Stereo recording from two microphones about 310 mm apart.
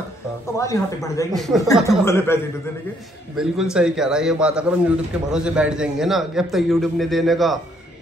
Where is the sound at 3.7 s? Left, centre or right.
Centre.